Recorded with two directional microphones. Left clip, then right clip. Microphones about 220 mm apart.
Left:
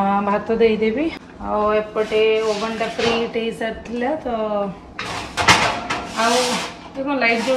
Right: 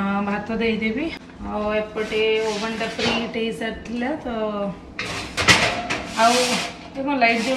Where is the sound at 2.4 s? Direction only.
20° left (ahead or behind).